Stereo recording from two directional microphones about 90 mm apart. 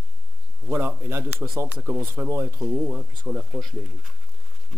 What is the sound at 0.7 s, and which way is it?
Speech, 25° right (ahead or behind).